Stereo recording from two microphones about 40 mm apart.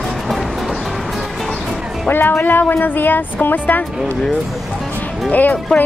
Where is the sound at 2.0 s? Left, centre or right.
Left.